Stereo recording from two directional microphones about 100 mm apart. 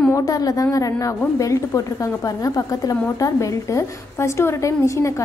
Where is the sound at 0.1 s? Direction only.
35° left (ahead or behind).